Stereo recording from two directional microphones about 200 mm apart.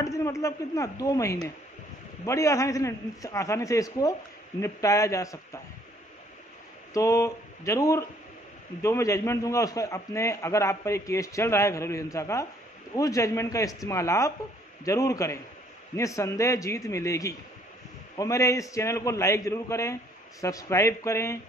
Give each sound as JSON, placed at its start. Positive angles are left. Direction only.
{"t": 0.0, "sound": "a man's voice", "side_deg": 15}
{"t": 6.9, "sound": "a man's voice", "side_deg": 15}